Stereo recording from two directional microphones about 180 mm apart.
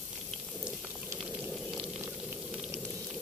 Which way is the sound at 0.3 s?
Centre (ahead or behind).